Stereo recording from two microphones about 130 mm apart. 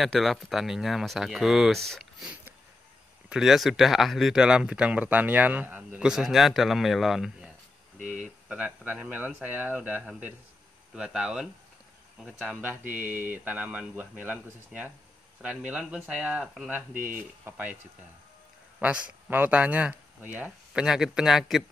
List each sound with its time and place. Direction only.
0.0 s speech: centre (ahead or behind)
2.2 s a sound: 10° right (ahead or behind)
3.3 s speech: 5° right (ahead or behind)
16.9 s speech: 90° right
17.5 s speech: 15° right (ahead or behind)
18.8 s speech: 10° right (ahead or behind)